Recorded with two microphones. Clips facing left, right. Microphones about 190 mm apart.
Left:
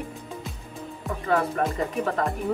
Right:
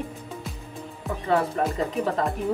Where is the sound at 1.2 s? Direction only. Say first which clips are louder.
Right 1 dB; 30° right (ahead or behind).